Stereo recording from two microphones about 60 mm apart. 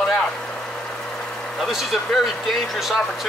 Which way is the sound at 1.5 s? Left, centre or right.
Centre.